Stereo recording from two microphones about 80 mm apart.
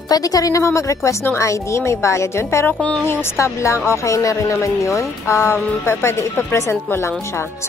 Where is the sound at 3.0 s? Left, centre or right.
Left.